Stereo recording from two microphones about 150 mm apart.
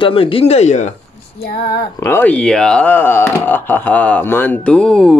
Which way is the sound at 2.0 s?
10° left (ahead or behind).